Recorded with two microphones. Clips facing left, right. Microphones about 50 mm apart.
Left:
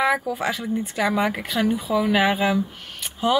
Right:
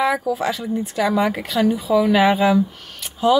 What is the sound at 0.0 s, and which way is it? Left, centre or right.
Speech, left.